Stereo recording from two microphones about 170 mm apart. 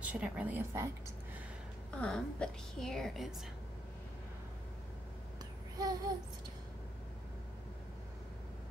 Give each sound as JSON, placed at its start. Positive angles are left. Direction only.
{"t": 0.0, "sound": "a woman's voice", "side_deg": -10}
{"t": 2.0, "sound": "a woman's voice", "side_deg": 5}
{"t": 5.8, "sound": "a sound", "side_deg": -20}